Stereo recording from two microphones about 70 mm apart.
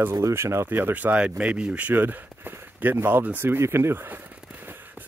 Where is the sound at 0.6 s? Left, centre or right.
Right.